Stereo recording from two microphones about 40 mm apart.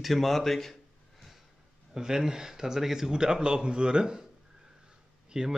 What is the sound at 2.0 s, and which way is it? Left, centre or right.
Speech, centre.